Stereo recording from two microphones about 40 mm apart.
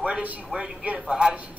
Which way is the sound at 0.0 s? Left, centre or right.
Right.